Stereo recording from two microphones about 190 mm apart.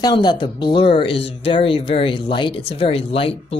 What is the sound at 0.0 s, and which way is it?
Speech, 20° left (ahead or behind).